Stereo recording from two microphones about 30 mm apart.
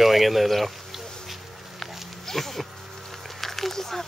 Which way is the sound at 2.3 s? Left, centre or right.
Centre.